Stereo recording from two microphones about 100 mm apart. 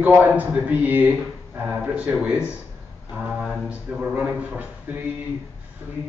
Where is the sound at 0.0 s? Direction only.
15° right (ahead or behind).